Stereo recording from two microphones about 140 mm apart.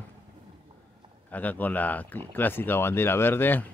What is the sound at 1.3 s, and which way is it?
Speech, 10° left (ahead or behind).